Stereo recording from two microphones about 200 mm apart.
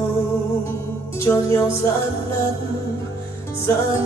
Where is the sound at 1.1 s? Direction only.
15° left (ahead or behind).